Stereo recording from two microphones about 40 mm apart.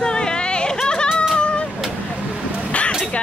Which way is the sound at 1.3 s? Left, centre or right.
Left.